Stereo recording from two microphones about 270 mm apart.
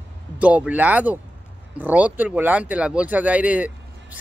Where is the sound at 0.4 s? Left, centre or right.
Centre.